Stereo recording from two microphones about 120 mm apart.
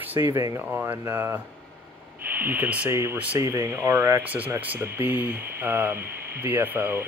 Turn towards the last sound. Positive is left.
turn(degrees=-20)  # may be behind; listen again after turning